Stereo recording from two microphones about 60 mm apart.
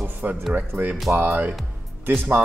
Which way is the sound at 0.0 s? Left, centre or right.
Right.